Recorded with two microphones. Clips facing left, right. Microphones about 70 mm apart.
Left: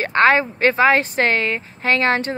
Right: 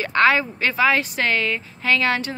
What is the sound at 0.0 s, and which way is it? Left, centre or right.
Speech, left.